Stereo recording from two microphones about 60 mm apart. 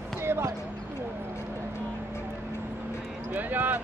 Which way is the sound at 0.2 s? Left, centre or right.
Right.